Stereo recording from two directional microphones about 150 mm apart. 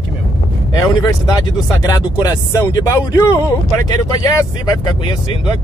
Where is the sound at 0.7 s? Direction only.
25° left (ahead or behind).